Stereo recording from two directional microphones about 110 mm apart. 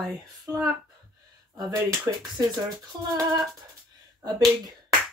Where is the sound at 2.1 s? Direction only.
25° right (ahead or behind).